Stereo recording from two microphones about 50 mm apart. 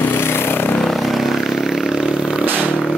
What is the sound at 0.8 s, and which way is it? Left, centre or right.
Vehicle, centre.